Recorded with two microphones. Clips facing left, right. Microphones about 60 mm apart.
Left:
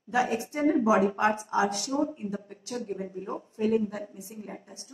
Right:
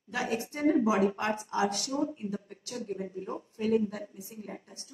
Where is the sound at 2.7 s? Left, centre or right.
Left.